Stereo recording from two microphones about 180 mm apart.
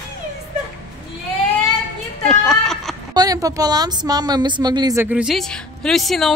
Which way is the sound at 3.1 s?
20° right (ahead or behind).